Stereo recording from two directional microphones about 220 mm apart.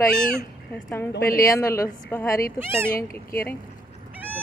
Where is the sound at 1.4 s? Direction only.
15° left (ahead or behind).